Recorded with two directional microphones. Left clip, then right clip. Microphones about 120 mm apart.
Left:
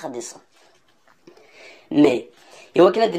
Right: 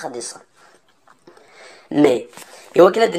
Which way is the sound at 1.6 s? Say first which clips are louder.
Right 1 dB; 15° left (ahead or behind).